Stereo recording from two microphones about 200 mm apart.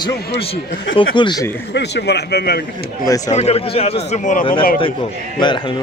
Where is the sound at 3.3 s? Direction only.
30° left (ahead or behind).